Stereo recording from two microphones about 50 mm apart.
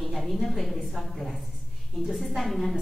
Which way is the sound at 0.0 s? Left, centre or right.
Centre.